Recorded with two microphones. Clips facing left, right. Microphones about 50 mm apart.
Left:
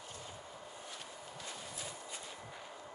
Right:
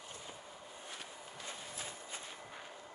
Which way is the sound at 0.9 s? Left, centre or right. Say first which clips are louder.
Even; right.